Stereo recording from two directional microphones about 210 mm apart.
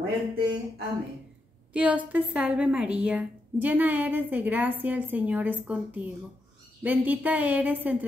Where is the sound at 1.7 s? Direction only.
5° right (ahead or behind).